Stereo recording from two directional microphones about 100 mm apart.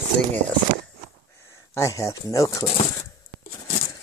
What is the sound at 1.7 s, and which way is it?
Speech, 30° left (ahead or behind).